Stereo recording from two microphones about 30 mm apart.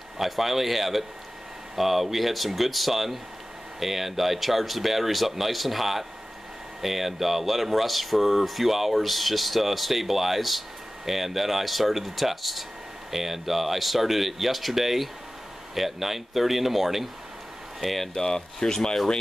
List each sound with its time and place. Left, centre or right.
0.2 s speech: centre
18.1 s speech: left